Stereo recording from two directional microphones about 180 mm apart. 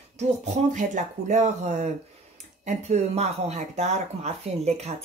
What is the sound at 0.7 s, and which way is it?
Speech, 40° right (ahead or behind).